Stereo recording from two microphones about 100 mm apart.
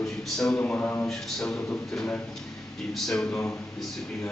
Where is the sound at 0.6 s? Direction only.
20° left (ahead or behind).